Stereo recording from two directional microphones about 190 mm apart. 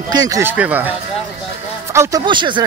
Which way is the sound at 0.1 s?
20° right (ahead or behind).